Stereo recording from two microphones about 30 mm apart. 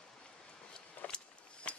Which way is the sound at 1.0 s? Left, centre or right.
Left.